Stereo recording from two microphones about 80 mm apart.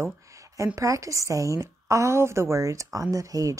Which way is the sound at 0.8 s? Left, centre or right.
Right.